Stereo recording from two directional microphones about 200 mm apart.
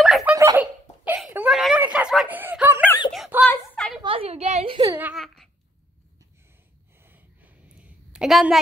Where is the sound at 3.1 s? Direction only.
Centre (ahead or behind).